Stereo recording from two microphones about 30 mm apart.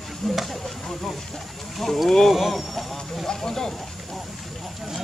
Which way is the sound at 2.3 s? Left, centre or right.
Centre.